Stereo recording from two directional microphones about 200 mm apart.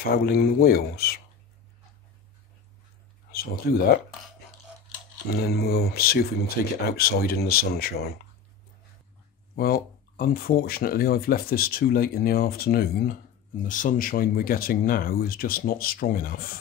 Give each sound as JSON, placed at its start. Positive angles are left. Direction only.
{"t": 0.1, "sound": "speech", "side_deg": 50}
{"t": 3.3, "sound": "speech", "side_deg": 50}
{"t": 5.4, "sound": "speech", "side_deg": 50}
{"t": 9.6, "sound": "speech", "side_deg": 45}